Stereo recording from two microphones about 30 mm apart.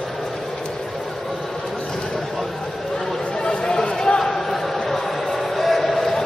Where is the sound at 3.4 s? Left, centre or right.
Left.